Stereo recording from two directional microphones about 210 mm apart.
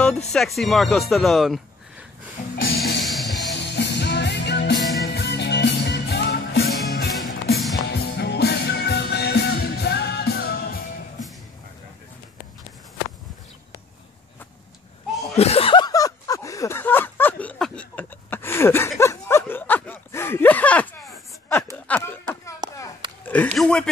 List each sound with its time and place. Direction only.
0.3 s speech: centre (ahead or behind)
2.5 s music: 45° left (ahead or behind)
3.0 s music: centre (ahead or behind)
3.5 s music: 55° left (ahead or behind)
7.5 s music: centre (ahead or behind)
7.9 s music: 50° left (ahead or behind)
15.3 s a sound: 30° left (ahead or behind); by 23.9 s 5° left (ahead or behind)